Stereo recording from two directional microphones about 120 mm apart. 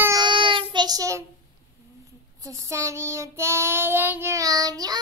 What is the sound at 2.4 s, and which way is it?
Child singing, 25° right (ahead or behind).